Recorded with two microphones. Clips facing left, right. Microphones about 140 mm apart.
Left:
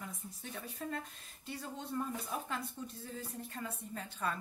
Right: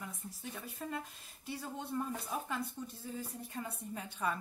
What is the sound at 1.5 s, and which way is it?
Speech, 10° right (ahead or behind).